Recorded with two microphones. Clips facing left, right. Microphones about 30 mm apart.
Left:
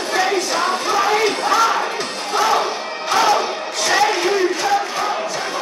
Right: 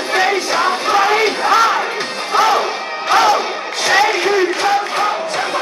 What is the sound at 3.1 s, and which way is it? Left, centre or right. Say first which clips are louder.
Crowd: right 4 dB; right.